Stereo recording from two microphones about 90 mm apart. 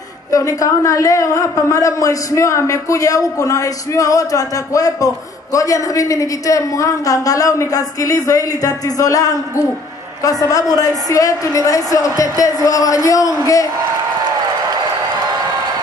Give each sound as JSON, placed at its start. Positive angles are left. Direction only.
{"t": 0.3, "sound": "a woman's voice", "side_deg": 40}